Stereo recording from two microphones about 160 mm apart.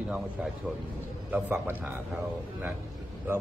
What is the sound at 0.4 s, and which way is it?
Speech, 5° right (ahead or behind).